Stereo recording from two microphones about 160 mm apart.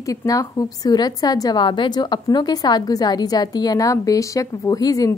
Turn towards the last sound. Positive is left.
turn(degrees=25)  # may be behind; listen again after turning